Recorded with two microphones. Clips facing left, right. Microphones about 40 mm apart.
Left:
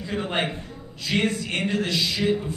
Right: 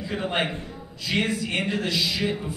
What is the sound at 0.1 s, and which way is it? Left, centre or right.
A woman's voice, centre.